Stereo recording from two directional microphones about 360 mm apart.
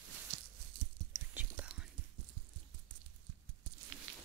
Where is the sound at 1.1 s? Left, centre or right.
Centre.